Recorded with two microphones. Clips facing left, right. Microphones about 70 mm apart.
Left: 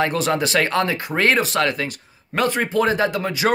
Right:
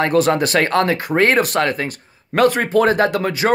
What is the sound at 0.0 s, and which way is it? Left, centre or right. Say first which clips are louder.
Speech: right 5 dB; right.